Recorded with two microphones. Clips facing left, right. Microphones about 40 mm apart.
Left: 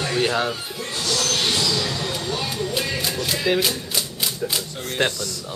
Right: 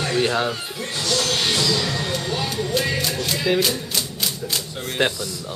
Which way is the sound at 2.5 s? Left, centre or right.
Centre.